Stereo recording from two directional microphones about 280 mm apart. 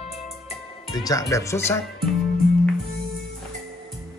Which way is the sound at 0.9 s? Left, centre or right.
Centre.